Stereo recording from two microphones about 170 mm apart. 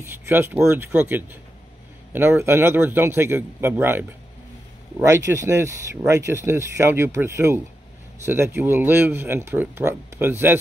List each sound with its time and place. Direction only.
0.0 s speech: 15° right (ahead or behind)